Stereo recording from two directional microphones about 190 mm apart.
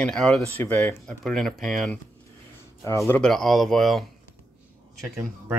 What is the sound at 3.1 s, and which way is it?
Speech, 5° left (ahead or behind).